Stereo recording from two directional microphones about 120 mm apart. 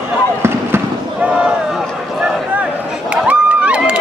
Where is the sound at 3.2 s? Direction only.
10° right (ahead or behind).